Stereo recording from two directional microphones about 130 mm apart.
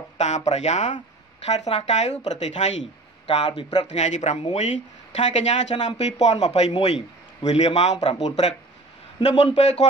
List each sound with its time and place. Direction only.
0.5 s speech: 60° left (ahead or behind)
3.3 s speech: 45° left (ahead or behind)
3.8 s a man's voice: 65° left (ahead or behind)